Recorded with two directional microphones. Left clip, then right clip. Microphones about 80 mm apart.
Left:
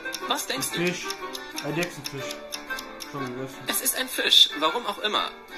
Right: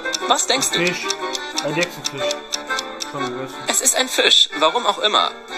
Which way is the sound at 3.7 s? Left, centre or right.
Left.